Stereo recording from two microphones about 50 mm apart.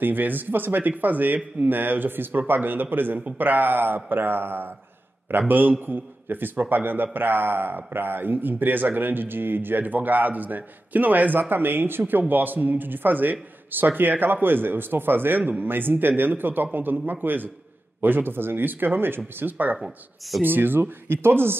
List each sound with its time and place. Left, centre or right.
0.0 s a man's voice: right
19.5 s a man's voice: right
19.8 s speech: centre
20.4 s speech: right